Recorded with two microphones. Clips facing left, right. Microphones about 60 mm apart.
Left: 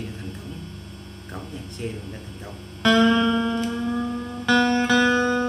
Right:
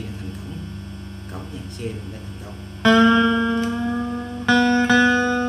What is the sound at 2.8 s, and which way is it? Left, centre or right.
Music, right.